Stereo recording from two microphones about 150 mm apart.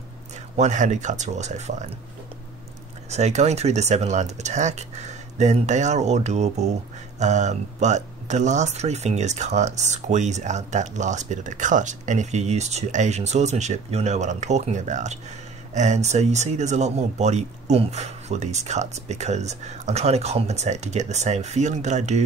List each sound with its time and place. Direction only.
0.6 s speech: 55° right (ahead or behind)
3.1 s speech: 50° right (ahead or behind)